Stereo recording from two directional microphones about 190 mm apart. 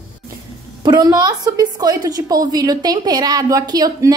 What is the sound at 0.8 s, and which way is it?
A woman's voice, 20° right (ahead or behind).